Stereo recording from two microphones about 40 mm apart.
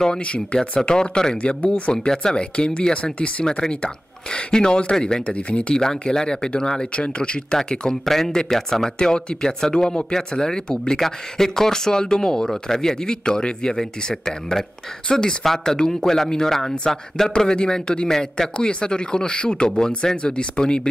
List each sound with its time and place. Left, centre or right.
0.6 s speech: centre
3.4 s speech: centre
5.8 s speech: centre
7.7 s speech: left
8.0 s speech: centre
15.4 s speech: centre